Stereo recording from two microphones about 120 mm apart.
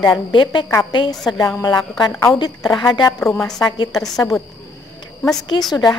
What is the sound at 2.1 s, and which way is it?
Speech, 20° left (ahead or behind).